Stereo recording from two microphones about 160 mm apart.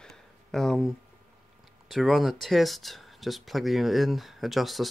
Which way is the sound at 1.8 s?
Centre (ahead or behind).